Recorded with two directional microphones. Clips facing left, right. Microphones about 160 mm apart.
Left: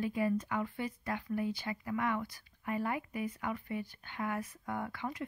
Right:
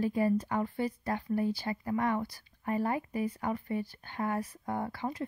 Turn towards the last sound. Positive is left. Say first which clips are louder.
# right 4 dB
turn(degrees=-35)  # may be behind; listen again after turning